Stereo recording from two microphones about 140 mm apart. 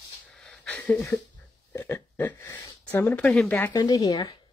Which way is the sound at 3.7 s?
25° left (ahead or behind).